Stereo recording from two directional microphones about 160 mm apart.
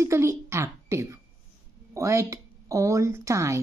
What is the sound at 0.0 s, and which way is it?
A woman's voice, 15° right (ahead or behind).